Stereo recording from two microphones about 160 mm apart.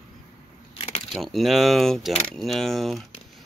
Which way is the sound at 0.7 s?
40° left (ahead or behind).